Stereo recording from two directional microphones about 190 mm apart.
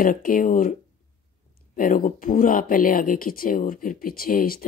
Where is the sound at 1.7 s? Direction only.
45° left (ahead or behind).